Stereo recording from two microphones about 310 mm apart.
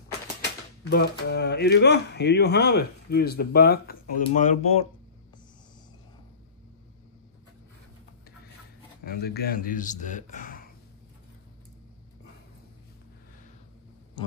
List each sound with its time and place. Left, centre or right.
0.8 s speech: left
9.0 s speech: left